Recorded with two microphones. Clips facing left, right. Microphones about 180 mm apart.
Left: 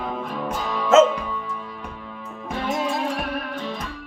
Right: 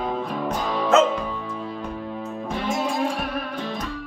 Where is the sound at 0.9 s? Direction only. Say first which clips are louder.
Left 4 dB; 20° left (ahead or behind).